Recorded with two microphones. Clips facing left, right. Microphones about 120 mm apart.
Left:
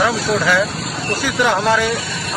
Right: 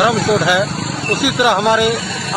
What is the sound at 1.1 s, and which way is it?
Speech, 15° right (ahead or behind).